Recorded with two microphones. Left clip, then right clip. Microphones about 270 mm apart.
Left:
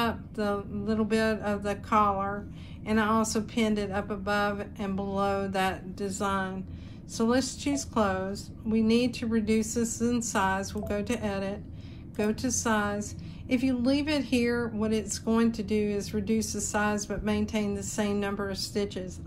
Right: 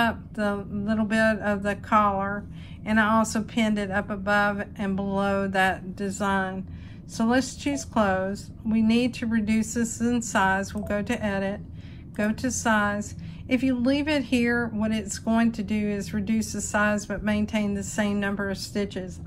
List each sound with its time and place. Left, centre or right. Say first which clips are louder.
0.0 s a woman's voice: right 4 dB; left